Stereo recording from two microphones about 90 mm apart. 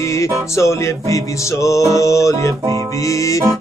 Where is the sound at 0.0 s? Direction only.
35° left (ahead or behind).